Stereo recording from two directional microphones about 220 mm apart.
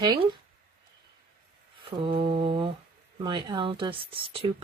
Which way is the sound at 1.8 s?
20° right (ahead or behind).